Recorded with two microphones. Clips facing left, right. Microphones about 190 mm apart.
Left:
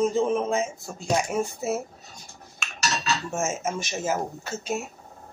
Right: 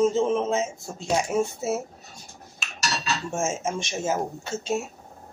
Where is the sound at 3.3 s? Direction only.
5° left (ahead or behind).